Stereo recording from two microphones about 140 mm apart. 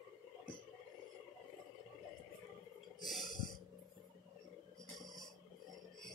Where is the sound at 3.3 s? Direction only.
30° left (ahead or behind).